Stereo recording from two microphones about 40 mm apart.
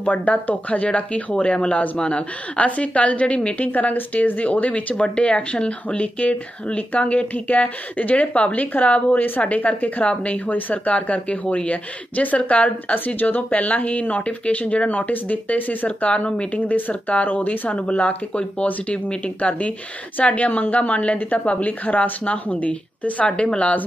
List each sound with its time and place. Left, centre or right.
0.0 s speech: left
5.0 s speech: left
12.9 s speech: left
17.6 s speech: left
23.2 s speech: left